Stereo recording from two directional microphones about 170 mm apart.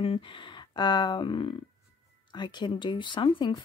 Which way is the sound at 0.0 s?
30° left (ahead or behind).